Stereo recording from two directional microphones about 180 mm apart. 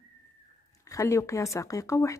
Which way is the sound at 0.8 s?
15° left (ahead or behind).